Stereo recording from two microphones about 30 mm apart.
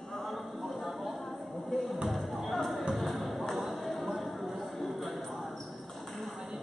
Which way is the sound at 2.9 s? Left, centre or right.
Centre.